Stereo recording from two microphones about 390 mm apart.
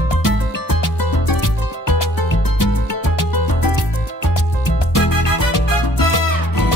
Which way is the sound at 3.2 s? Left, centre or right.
Left.